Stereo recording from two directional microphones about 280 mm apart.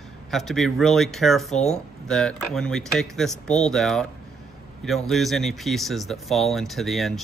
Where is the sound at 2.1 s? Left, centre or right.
Centre.